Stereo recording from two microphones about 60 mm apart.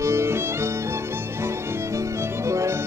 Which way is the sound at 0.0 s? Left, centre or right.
Right.